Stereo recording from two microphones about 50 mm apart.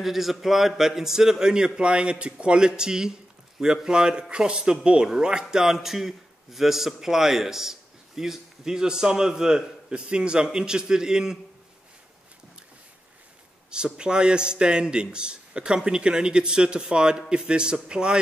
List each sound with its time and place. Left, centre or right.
0.0 s a man's voice: centre
13.7 s a man's voice: centre